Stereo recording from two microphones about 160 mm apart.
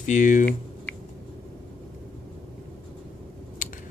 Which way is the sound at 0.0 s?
55° left (ahead or behind).